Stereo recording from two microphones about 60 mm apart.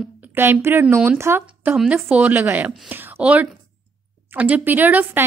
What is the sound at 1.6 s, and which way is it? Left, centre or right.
A woman's voice, right.